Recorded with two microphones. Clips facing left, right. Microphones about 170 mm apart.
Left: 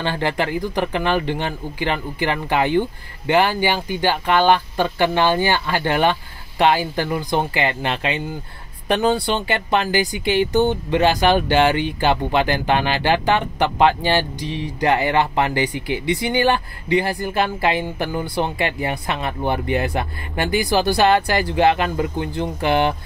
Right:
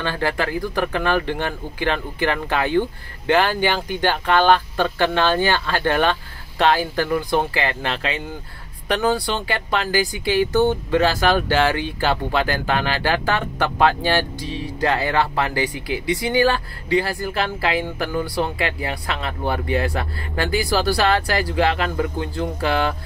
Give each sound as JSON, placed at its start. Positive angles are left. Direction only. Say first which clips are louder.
{"t": 0.0, "sound": "speech", "louder": "left 1 dB", "side_deg": 20}